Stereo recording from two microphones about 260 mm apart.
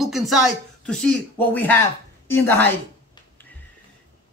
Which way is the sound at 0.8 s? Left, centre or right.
Centre.